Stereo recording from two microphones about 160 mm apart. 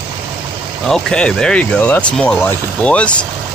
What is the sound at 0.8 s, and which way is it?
Speech, 5° left (ahead or behind).